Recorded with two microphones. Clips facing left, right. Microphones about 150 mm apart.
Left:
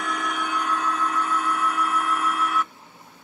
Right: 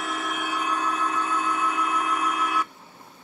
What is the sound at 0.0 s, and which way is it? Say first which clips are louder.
Train: left 2 dB; 5° right (ahead or behind).